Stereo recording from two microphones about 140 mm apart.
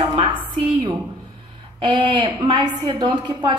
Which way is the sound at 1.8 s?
35° right (ahead or behind).